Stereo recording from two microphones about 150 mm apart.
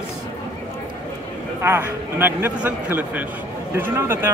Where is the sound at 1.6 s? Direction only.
15° right (ahead or behind).